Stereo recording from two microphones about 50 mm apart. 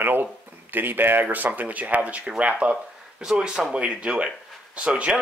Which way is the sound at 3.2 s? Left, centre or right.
Centre.